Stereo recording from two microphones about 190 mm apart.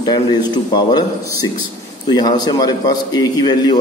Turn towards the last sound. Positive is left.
turn(degrees=20)  # may be behind; listen again after turning